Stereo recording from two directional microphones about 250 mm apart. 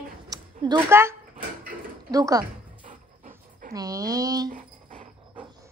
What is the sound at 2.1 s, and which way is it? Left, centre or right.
Speech, centre.